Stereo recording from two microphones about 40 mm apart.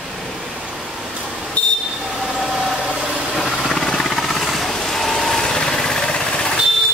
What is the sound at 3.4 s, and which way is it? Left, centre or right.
Wild animals, centre.